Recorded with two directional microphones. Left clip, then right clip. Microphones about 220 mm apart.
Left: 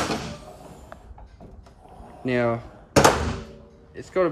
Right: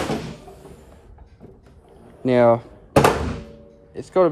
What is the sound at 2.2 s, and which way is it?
Speech, 15° right (ahead or behind).